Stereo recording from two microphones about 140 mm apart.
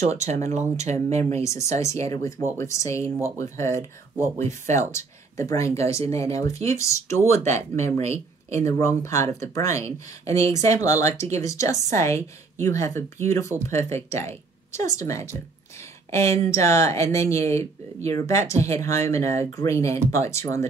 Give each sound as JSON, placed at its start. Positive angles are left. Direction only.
{"t": 0.0, "sound": "speech", "side_deg": -55}
{"t": 1.4, "sound": "a woman's voice", "side_deg": 20}
{"t": 4.9, "sound": "a woman's voice", "side_deg": 20}